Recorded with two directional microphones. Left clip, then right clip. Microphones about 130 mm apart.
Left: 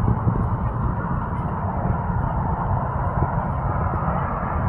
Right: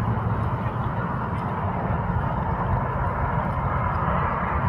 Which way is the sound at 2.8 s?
30° right (ahead or behind).